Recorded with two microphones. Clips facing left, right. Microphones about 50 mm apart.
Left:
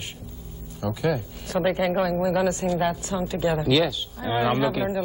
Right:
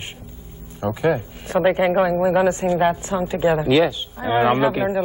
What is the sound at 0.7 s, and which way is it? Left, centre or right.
Speech, right.